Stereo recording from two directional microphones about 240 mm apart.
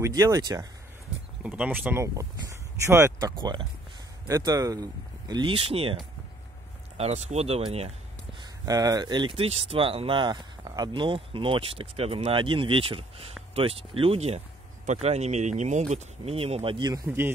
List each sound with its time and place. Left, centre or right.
0.0 s speech: centre
7.0 s speech: right
8.6 s speech: centre